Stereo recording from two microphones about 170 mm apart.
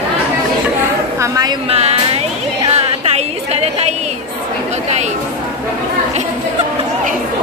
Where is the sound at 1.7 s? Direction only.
40° right (ahead or behind).